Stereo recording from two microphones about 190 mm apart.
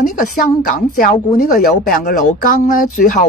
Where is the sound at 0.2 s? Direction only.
45° left (ahead or behind).